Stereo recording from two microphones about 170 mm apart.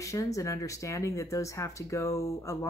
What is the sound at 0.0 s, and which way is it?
Speech, 20° left (ahead or behind).